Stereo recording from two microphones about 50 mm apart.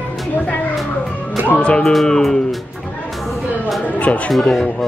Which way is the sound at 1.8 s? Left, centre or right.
Centre.